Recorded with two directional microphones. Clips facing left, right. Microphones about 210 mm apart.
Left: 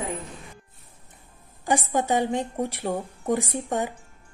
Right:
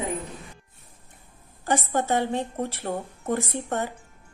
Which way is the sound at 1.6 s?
15° left (ahead or behind).